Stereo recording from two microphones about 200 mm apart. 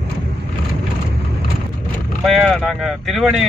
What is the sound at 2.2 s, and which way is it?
Speech, centre (ahead or behind).